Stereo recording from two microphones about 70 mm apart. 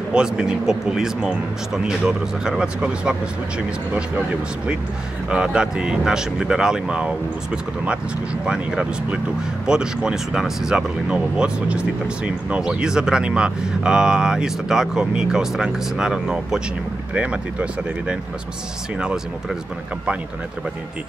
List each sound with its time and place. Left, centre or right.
0.1 s speech: centre
5.3 s speech: centre
8.5 s speech: centre
17.1 s speech: centre